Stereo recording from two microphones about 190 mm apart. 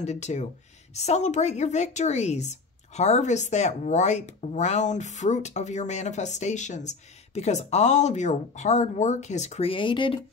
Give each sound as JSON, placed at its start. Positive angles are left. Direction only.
{"t": 0.0, "sound": "speech", "side_deg": 35}